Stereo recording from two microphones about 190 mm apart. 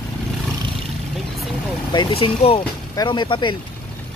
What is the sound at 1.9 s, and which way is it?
Speech, 25° left (ahead or behind).